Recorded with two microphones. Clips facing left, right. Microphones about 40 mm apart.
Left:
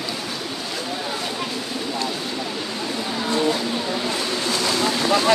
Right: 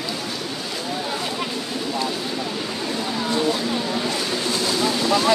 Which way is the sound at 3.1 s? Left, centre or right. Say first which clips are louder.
Left 1 dB; centre.